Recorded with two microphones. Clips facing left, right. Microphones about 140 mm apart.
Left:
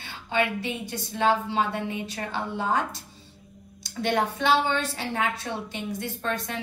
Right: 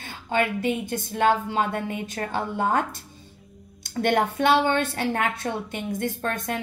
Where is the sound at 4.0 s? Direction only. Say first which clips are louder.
Right 4 dB; 55° right (ahead or behind).